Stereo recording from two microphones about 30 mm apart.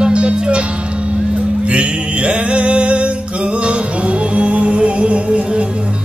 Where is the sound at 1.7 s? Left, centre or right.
Right.